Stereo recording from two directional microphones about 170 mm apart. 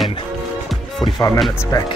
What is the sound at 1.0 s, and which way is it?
Speech, 20° left (ahead or behind).